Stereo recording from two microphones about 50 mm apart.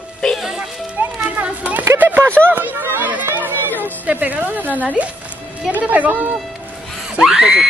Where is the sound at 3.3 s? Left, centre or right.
Right.